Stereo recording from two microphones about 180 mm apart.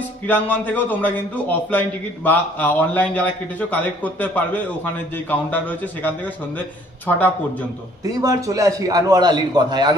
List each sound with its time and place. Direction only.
0.3 s a man's voice: 10° left (ahead or behind)
8.0 s a man's voice: 20° right (ahead or behind)